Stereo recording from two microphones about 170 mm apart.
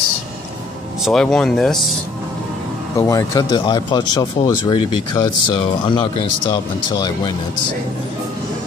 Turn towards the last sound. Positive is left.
turn(degrees=25)  # may be behind; listen again after turning